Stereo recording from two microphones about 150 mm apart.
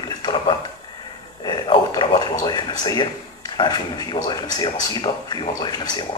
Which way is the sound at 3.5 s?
30° left (ahead or behind).